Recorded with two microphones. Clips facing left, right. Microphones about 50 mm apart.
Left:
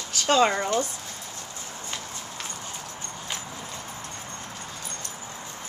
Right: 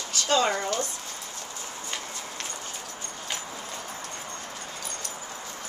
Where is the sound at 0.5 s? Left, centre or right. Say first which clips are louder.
Left 2 dB; left.